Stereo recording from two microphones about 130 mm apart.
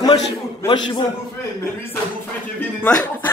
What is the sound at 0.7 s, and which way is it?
Speech, 40° left (ahead or behind).